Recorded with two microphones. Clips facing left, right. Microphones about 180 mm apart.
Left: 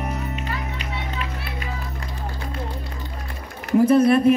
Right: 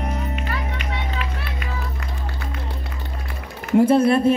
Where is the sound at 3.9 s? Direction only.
30° right (ahead or behind).